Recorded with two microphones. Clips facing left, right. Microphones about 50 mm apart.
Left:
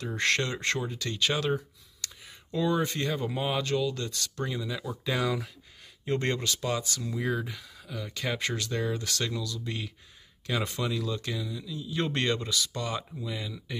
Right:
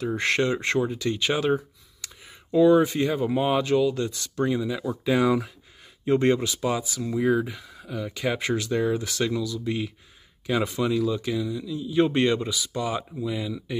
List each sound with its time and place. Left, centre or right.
0.0 s speech: centre